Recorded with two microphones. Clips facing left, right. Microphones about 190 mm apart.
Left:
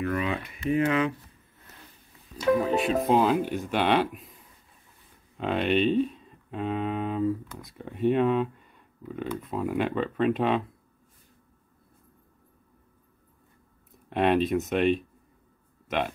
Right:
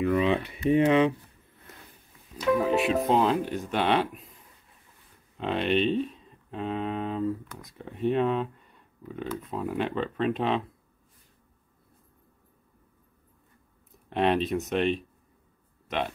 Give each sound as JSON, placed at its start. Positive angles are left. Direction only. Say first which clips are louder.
{"t": 0.2, "sound": "speech", "louder": "right 5 dB", "side_deg": -30}
{"t": 2.6, "sound": "speech", "louder": "right 1 dB", "side_deg": 0}
{"t": 5.4, "sound": "speech", "louder": "left 1 dB", "side_deg": 5}
{"t": 14.0, "sound": "speech", "louder": "left 2 dB", "side_deg": 5}